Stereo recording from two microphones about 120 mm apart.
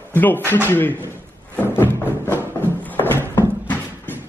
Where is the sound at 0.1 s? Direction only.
15° left (ahead or behind).